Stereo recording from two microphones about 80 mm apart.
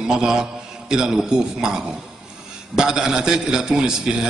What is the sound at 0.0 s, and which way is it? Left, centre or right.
A man's voice, centre.